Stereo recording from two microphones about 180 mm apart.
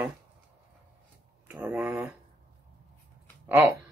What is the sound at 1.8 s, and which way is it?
Speech, 10° right (ahead or behind).